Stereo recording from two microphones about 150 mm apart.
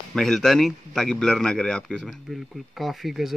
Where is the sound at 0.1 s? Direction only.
5° left (ahead or behind).